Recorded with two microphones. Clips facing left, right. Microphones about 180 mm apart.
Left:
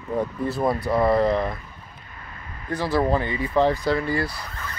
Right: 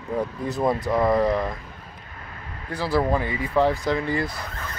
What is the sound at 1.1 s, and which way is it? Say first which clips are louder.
Speech: left 1 dB; 10° right (ahead or behind).